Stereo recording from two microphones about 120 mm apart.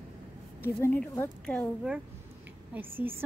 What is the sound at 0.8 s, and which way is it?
Speech, 20° left (ahead or behind).